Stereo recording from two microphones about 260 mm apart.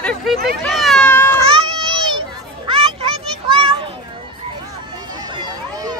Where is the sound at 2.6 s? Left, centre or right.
Right.